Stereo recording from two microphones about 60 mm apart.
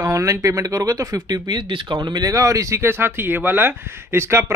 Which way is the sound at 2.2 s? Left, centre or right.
Right.